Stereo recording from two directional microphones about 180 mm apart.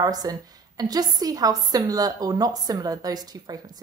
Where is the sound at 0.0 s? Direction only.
20° right (ahead or behind).